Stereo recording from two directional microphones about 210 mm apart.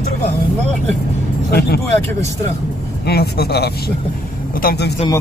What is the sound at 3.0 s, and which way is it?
Speech, 50° left (ahead or behind).